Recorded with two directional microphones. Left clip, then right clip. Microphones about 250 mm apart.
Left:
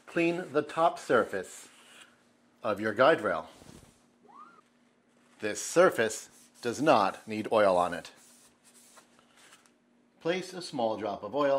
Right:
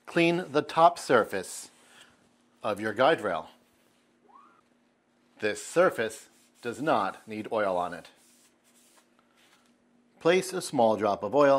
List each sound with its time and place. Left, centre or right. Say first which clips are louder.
0.0 s speech: right 4 dB; right
2.6 s speech: even; centre
5.7 s speech: left 1 dB; centre
10.1 s speech: right 8 dB; right